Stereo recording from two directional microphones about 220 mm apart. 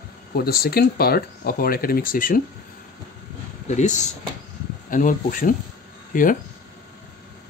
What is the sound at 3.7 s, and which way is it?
Speech, 30° left (ahead or behind).